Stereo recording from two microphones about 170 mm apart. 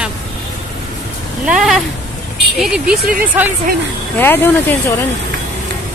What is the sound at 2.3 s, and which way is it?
Speech, 5° right (ahead or behind).